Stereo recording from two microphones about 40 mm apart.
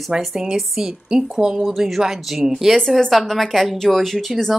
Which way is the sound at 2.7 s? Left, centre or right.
Centre.